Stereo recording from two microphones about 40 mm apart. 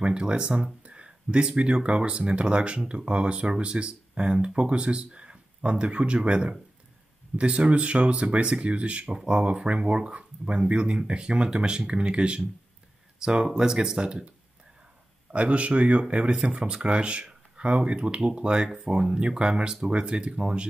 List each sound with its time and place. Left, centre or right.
0.0 s speech: right
15.3 s speech: right